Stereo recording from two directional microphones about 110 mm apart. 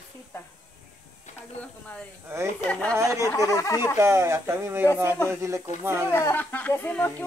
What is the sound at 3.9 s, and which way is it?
Speech, 25° right (ahead or behind).